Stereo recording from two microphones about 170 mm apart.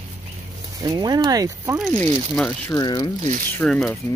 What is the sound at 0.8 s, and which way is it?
Speech, 25° right (ahead or behind).